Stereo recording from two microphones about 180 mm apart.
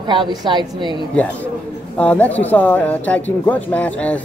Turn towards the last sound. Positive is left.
turn(degrees=10)  # may be behind; listen again after turning